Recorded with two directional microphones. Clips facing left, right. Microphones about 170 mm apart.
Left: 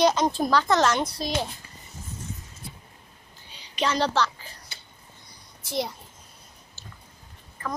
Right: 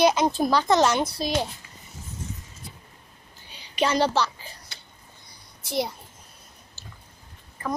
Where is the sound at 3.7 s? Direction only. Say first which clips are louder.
Right 2 dB; 10° right (ahead or behind).